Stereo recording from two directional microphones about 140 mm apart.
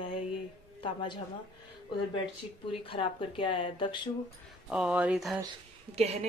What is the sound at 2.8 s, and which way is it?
Speech, 40° left (ahead or behind).